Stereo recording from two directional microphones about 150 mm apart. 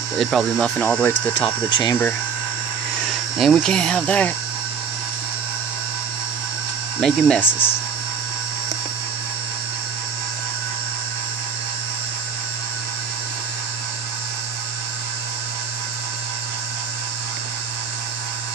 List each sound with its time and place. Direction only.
0.2 s speech: centre (ahead or behind)
1.4 s speech: 30° left (ahead or behind)
3.3 s speech: centre (ahead or behind)
7.0 s speech: 5° left (ahead or behind)